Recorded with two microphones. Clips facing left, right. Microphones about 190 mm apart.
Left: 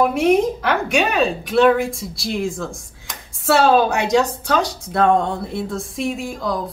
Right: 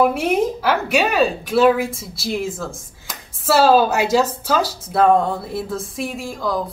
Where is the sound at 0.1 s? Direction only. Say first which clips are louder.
Left 3 dB; 5° right (ahead or behind).